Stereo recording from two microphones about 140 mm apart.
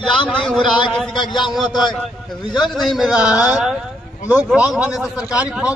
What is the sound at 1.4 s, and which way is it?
Speech, centre (ahead or behind).